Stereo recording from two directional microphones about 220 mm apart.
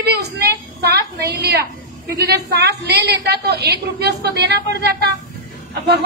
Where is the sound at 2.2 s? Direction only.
50° right (ahead or behind).